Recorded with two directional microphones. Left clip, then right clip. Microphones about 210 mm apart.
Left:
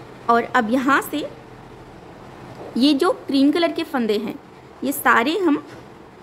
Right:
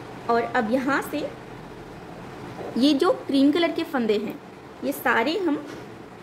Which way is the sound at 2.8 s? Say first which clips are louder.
Left 3 dB; 20° left (ahead or behind).